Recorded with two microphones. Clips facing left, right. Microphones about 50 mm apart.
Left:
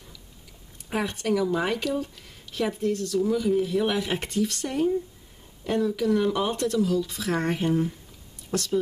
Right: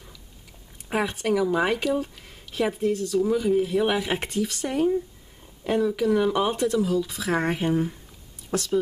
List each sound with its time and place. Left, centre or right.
0.9 s speech: centre